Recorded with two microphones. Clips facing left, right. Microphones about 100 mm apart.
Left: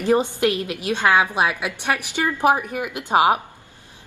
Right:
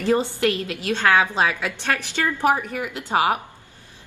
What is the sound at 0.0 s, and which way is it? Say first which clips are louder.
A woman's voice: left 2 dB; 20° left (ahead or behind).